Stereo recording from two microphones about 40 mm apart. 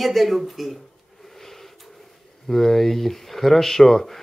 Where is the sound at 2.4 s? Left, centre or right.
Centre.